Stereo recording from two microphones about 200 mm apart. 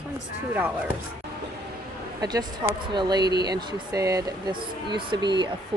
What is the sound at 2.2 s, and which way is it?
Speech, 20° right (ahead or behind).